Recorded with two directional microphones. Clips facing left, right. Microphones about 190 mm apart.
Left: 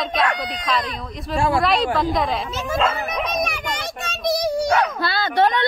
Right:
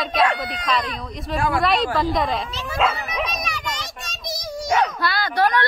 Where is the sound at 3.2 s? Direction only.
55° left (ahead or behind).